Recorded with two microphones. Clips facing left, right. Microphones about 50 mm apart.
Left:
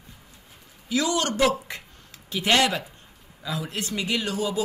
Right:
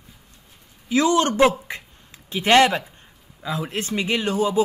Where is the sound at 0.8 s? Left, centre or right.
Right.